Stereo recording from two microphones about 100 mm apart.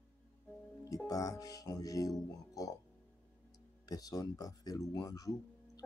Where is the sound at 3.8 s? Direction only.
40° left (ahead or behind).